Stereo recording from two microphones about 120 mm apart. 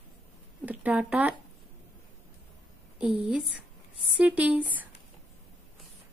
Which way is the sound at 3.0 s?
10° right (ahead or behind).